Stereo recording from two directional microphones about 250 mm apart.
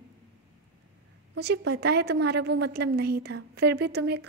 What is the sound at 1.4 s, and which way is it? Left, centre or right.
A woman's voice, right.